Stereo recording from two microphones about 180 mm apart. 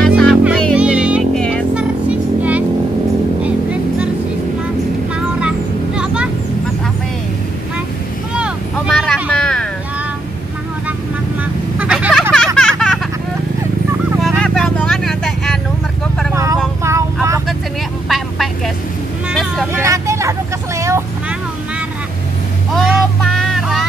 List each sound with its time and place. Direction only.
0.0 s music: centre (ahead or behind)
8.4 s vehicle: centre (ahead or behind)
11.8 s vehicle: 5° right (ahead or behind)
12.1 s a sound: 5° left (ahead or behind)
14.2 s vehicle: centre (ahead or behind)
16.8 s vehicle: 15° right (ahead or behind)
18.0 s vehicle: centre (ahead or behind)
19.7 s vehicle: 15° right (ahead or behind)
22.8 s vehicle: centre (ahead or behind)